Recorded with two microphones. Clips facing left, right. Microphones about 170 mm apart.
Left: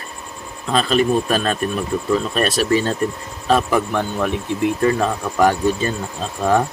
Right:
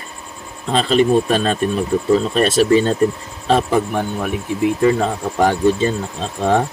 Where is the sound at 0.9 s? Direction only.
25° right (ahead or behind).